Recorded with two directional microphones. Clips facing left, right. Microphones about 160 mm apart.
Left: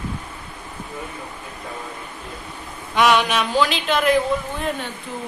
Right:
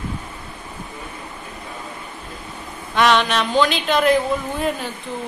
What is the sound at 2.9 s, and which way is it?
Speech, 10° left (ahead or behind).